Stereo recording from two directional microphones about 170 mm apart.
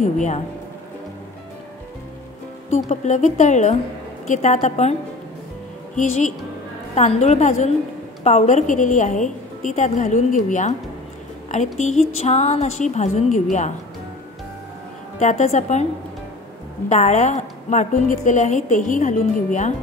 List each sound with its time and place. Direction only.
0.0 s a woman's voice: 45° left (ahead or behind)
2.9 s a woman's voice: 45° left (ahead or behind)
5.9 s a woman's voice: 45° left (ahead or behind)
11.8 s a woman's voice: 40° left (ahead or behind)
15.1 s a woman's voice: 45° left (ahead or behind)
16.9 s a woman's voice: 45° left (ahead or behind)